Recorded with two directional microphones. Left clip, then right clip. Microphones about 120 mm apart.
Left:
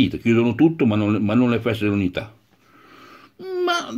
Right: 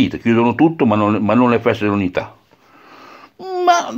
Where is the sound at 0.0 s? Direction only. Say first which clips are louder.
Right 4 dB; 20° left (ahead or behind).